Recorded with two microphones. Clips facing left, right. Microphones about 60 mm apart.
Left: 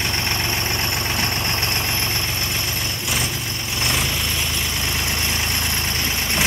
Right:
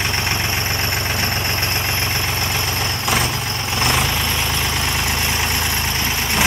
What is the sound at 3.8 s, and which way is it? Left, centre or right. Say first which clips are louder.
Vehicle: right 4 dB; right.